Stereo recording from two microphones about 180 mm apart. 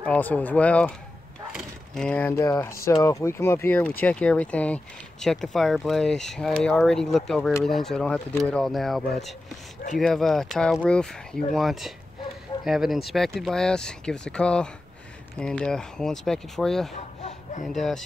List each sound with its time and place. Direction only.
0.0 s speech: 5° left (ahead or behind)
16.9 s a sound: 40° left (ahead or behind)
17.7 s speech: centre (ahead or behind)